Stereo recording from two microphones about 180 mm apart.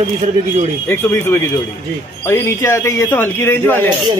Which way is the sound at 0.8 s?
10° left (ahead or behind).